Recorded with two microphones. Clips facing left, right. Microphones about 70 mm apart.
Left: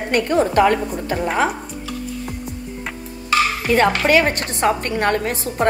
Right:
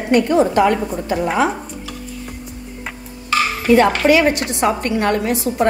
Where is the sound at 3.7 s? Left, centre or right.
Left.